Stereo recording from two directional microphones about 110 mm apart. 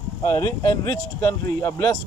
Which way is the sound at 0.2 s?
30° left (ahead or behind).